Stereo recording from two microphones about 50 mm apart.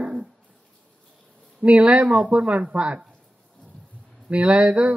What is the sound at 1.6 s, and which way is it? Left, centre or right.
Speech, right.